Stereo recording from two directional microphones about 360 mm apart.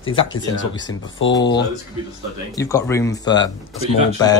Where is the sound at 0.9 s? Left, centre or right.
Left.